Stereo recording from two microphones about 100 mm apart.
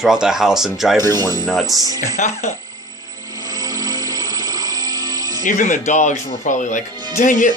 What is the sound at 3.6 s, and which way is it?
Music, 40° right (ahead or behind).